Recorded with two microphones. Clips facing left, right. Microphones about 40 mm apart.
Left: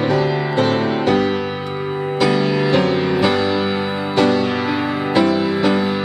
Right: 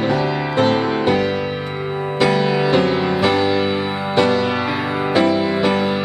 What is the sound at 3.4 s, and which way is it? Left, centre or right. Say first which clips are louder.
Music: right 1 dB; centre.